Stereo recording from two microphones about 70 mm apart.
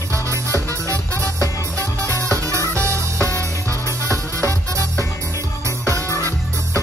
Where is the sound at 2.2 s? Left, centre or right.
Right.